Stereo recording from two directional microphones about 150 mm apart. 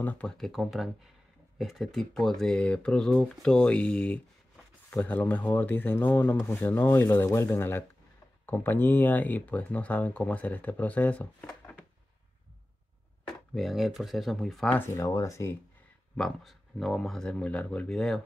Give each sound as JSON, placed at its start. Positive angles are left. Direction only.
{"t": 0.0, "sound": "speech", "side_deg": 10}
{"t": 13.6, "sound": "speech", "side_deg": 0}
{"t": 14.8, "sound": "speech", "side_deg": 20}
{"t": 16.2, "sound": "speech", "side_deg": 5}